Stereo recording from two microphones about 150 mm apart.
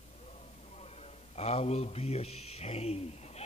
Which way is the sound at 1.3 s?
45° left (ahead or behind).